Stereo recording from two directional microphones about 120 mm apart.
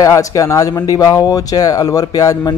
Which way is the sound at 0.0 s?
30° left (ahead or behind).